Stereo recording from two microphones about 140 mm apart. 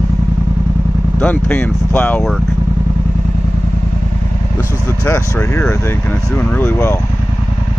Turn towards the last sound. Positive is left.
turn(degrees=15)  # may be behind; listen again after turning